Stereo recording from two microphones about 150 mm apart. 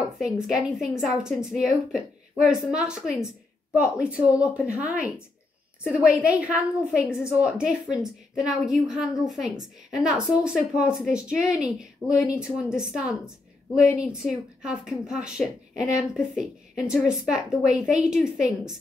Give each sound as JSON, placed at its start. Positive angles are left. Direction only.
{"t": 0.2, "sound": "a woman's voice", "side_deg": -5}
{"t": 5.9, "sound": "a woman's voice", "side_deg": -10}
{"t": 7.1, "sound": "a woman's voice", "side_deg": 15}
{"t": 7.4, "sound": "a woman's voice", "side_deg": -5}